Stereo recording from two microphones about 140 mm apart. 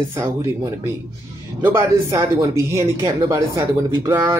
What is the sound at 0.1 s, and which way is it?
Speech, 20° right (ahead or behind).